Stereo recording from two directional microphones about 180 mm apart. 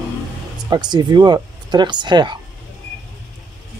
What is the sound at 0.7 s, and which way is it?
Speech, 25° right (ahead or behind).